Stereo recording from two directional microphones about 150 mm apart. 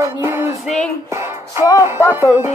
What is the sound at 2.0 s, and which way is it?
Music, 15° right (ahead or behind).